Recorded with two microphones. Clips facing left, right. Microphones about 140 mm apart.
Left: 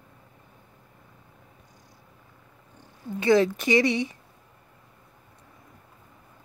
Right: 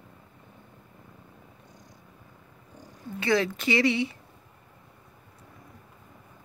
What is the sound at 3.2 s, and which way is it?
Speech, 20° left (ahead or behind).